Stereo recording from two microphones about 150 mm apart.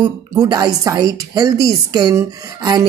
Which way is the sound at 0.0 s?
25° right (ahead or behind).